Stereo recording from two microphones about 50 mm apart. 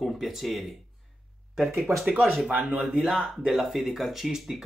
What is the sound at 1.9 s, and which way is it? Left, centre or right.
Speech, right.